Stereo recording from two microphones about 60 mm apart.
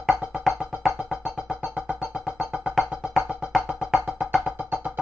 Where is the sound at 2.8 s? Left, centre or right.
Centre.